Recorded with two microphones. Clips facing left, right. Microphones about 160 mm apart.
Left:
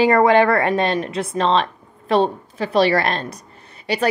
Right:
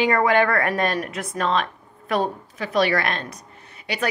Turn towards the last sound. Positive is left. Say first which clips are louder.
# left 6 dB
turn(degrees=35)  # may be behind; listen again after turning